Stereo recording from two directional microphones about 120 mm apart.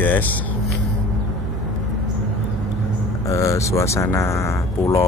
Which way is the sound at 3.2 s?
25° left (ahead or behind).